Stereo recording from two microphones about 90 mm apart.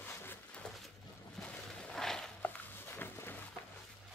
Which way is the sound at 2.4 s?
25° left (ahead or behind).